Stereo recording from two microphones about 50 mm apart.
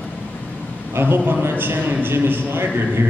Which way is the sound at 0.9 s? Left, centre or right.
Right.